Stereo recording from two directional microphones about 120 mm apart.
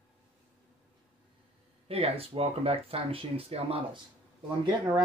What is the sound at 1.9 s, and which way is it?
Speech, 55° right (ahead or behind).